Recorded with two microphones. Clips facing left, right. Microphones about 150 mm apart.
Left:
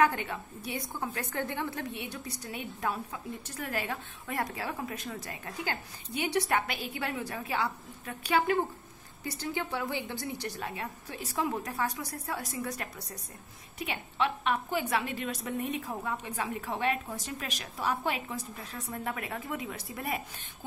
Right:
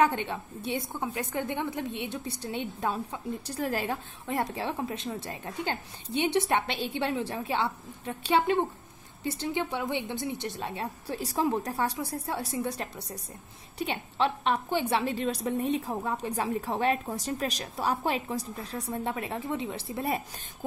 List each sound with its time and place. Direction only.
0.0 s a woman's voice: 25° right (ahead or behind)